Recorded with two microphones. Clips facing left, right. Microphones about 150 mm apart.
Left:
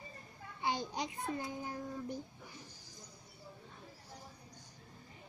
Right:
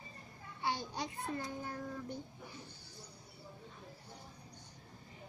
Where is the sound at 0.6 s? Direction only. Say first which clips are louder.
Left 2 dB; 20° left (ahead or behind).